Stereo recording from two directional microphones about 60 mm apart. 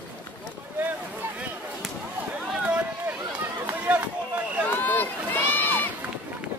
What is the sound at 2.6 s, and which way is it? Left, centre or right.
Run, right.